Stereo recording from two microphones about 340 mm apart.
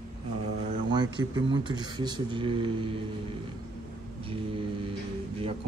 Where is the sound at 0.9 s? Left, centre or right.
Centre.